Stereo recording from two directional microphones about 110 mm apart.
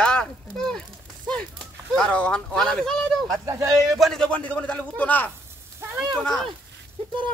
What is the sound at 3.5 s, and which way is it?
Speech, 30° right (ahead or behind).